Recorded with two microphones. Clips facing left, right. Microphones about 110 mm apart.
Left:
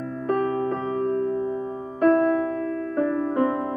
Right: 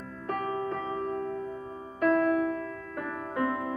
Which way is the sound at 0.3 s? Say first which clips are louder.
Left 8 dB; 40° left (ahead or behind).